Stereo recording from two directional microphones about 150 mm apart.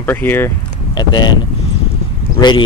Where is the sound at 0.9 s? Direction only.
30° left (ahead or behind).